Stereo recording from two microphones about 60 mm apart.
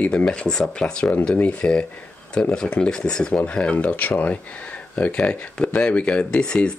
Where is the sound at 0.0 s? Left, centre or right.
Centre.